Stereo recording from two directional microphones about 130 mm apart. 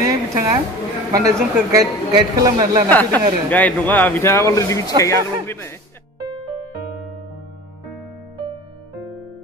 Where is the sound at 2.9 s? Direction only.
15° left (ahead or behind).